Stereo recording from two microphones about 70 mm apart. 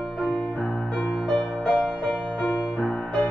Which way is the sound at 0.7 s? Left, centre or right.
Centre.